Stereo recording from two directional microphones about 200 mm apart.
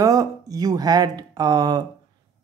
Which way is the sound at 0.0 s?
15° right (ahead or behind).